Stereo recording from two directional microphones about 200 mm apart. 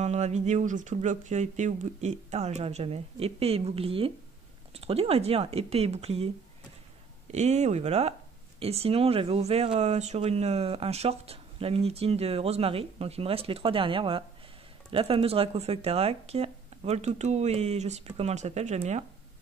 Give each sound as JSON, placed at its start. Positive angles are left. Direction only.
{"t": 0.0, "sound": "speech", "side_deg": -35}